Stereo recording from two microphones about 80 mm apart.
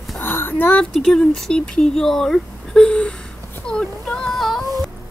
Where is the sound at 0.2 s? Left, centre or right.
Left.